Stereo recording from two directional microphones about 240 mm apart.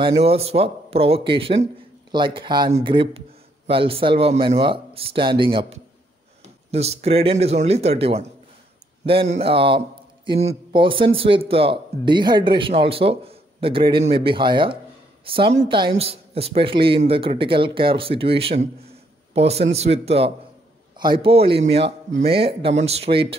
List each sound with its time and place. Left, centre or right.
0.0 s speech: right